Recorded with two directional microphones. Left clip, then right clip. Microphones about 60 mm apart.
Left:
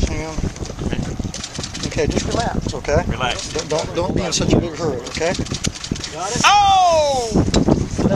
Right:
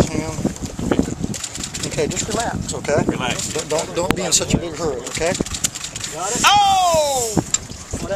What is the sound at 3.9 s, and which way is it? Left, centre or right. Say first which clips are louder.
Speech: right 1 dB; centre.